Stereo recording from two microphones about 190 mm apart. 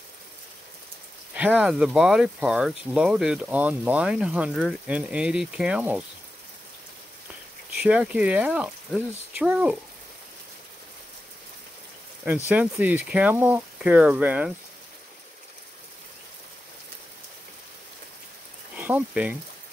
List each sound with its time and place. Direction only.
1.3 s speech: 5° right (ahead or behind)
7.8 s speech: 5° right (ahead or behind)
12.4 s speech: 10° right (ahead or behind)
18.8 s speech: 10° right (ahead or behind)